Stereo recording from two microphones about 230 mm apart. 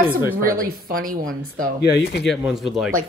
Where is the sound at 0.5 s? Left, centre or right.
Right.